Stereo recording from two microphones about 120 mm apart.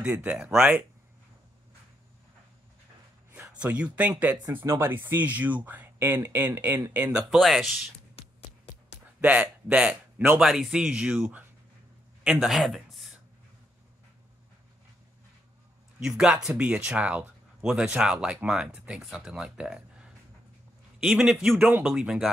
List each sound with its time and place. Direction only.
0.2 s speech: 10° right (ahead or behind)
3.4 s speech: 10° right (ahead or behind)
7.1 s a man's voice: 5° right (ahead or behind)
8.2 s a sound: 55° left (ahead or behind)
9.2 s speech: 10° right (ahead or behind)
12.2 s a sound: 5° right (ahead or behind)
16.0 s a man's voice: 5° right (ahead or behind)